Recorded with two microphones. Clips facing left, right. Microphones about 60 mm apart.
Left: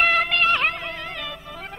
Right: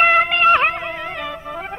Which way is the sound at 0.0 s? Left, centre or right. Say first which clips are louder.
Right 6 dB; centre.